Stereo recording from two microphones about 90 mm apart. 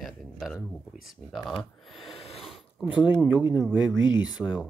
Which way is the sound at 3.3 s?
15° right (ahead or behind).